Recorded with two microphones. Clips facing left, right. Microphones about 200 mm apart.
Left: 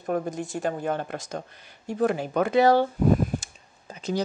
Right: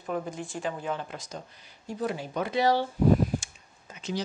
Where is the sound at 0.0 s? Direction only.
45° left (ahead or behind).